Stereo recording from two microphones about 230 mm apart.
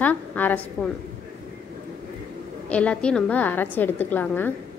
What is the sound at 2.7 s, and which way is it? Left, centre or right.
A woman's voice, centre.